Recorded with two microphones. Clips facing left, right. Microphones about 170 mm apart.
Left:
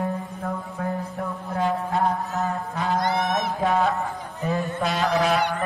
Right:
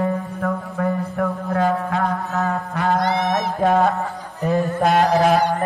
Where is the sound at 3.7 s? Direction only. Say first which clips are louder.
Right 5 dB; 40° right (ahead or behind).